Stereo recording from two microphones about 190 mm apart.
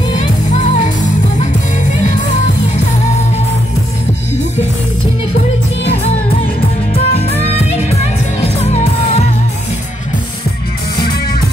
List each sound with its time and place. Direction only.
0.1 s music: 40° left (ahead or behind)
6.9 s music: 30° left (ahead or behind)